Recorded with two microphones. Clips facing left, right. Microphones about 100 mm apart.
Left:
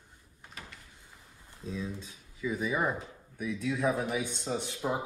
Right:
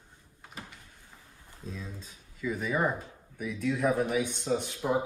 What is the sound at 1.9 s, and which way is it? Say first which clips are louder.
Speech: left 4 dB; centre (ahead or behind).